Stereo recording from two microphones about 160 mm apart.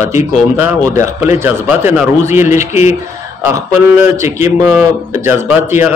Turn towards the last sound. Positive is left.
turn(degrees=-10)  # may be behind; listen again after turning